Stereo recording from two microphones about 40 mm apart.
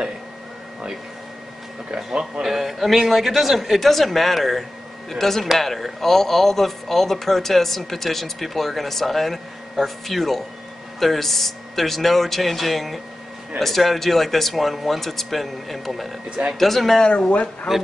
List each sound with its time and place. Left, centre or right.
2.4 s speech: centre
3.8 s speech: centre
17.3 s speech: left